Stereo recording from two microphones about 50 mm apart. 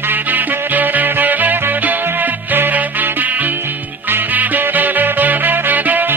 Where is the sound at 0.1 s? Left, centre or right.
Right.